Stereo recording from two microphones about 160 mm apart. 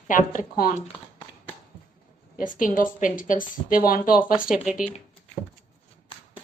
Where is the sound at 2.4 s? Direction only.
55° left (ahead or behind).